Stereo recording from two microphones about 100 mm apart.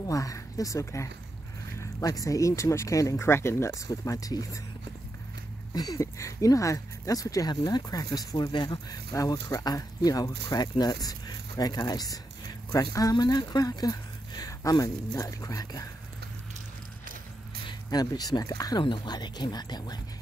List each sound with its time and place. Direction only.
0.0 s speech: 35° left (ahead or behind)
5.7 s speech: 35° left (ahead or behind)
17.8 s speech: 40° left (ahead or behind)